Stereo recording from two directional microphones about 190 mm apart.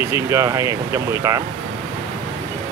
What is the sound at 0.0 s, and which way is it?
Speech, 15° right (ahead or behind).